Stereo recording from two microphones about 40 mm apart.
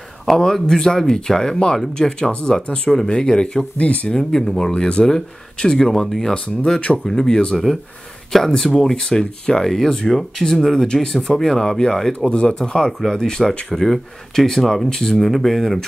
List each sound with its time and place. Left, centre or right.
0.4 s speech: centre
3.7 s speech: left
4.1 s speech: centre
12.3 s speech: left; by 15.8 s centre